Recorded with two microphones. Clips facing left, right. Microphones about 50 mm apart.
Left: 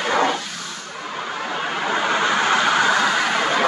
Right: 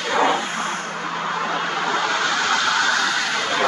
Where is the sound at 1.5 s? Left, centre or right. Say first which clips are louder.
Left 3 dB; centre.